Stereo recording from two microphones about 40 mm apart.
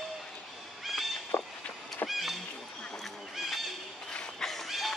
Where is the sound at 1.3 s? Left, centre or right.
Left.